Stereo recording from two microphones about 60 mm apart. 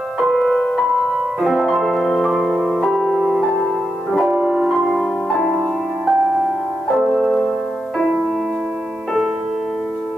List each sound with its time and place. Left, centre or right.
0.2 s music: centre
4.3 s music: right
4.6 s music: centre